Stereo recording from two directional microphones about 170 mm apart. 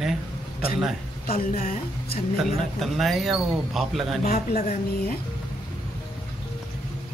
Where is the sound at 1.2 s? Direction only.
60° left (ahead or behind).